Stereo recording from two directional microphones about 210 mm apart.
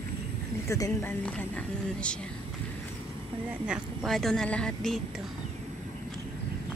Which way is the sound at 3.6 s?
5° right (ahead or behind).